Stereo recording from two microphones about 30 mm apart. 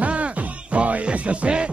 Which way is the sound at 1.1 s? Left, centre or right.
Right.